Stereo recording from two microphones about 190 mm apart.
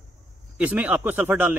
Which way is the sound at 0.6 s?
10° right (ahead or behind).